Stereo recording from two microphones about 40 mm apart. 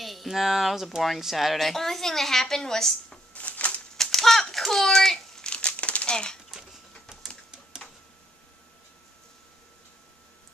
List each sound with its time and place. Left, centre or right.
0.0 s speech: centre
3.3 s a sound: left
3.9 s typewriter: centre
5.4 s crumpling: left
6.5 s a sound: centre
7.1 s typewriter: centre